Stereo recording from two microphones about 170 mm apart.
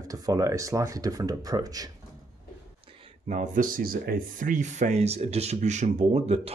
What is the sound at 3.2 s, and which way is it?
Speech, 50° right (ahead or behind).